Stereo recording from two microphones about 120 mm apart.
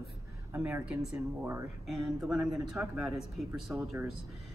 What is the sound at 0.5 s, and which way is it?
Speech, 20° right (ahead or behind).